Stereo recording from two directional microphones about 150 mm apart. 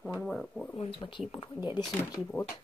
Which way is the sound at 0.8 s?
35° left (ahead or behind).